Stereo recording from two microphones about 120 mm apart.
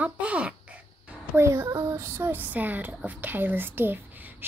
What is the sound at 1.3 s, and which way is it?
Speech, 25° right (ahead or behind).